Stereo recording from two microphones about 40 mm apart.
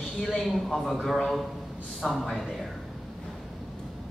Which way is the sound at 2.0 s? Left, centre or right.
Centre.